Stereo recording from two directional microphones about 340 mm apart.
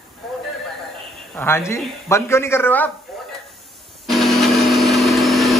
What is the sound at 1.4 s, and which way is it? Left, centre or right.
A man's voice, centre.